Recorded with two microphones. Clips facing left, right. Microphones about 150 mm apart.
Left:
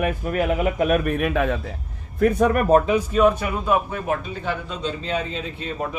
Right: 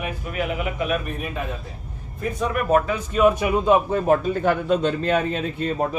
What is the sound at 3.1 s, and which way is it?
Speech, 10° right (ahead or behind).